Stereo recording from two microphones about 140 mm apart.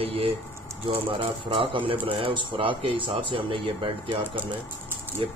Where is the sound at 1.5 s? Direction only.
40° right (ahead or behind).